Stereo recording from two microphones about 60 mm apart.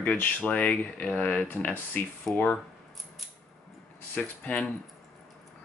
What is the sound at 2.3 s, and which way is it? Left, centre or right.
Speech, left.